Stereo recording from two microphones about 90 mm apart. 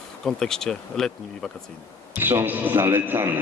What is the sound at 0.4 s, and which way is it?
Speech, 5° left (ahead or behind).